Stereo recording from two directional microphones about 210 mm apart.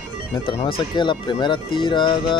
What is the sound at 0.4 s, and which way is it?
Speech, 25° left (ahead or behind).